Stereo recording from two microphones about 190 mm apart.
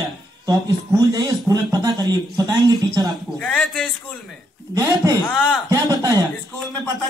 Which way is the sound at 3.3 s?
5° left (ahead or behind).